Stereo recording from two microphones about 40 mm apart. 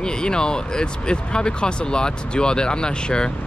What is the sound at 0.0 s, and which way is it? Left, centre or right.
Speech, centre.